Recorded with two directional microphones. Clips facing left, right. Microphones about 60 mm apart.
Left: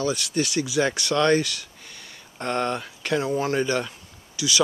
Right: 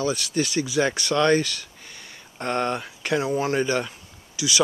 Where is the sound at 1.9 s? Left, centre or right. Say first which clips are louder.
Right 1 dB; centre.